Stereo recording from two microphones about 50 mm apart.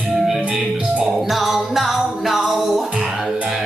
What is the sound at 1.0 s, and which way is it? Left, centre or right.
Music, centre.